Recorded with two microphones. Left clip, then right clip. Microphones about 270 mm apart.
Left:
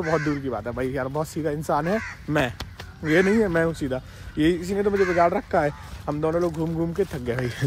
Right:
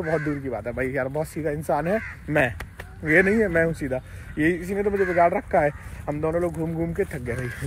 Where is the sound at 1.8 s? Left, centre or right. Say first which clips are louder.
Right 1 dB; left.